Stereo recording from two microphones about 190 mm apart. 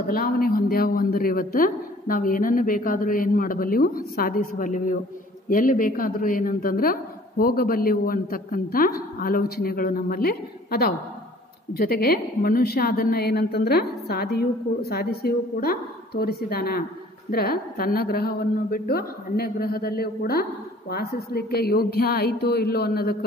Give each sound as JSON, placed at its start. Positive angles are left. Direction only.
{"t": 0.1, "sound": "a woman's voice", "side_deg": 50}